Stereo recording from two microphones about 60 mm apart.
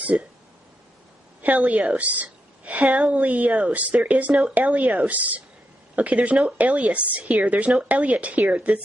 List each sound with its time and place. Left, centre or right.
0.0 s speech: centre
1.4 s a woman's voice: right
4.6 s speech: right